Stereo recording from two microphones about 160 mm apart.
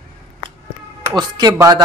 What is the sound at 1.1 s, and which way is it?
Music, 25° right (ahead or behind).